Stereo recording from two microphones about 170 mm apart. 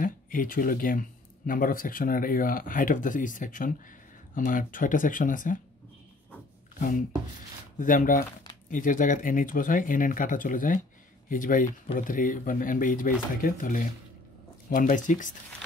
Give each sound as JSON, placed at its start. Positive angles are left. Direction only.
{"t": 0.0, "sound": "speech", "side_deg": 55}
{"t": 6.8, "sound": "speech", "side_deg": 50}